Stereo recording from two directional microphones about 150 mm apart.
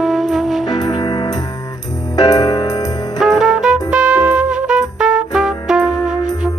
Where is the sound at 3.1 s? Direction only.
Centre (ahead or behind).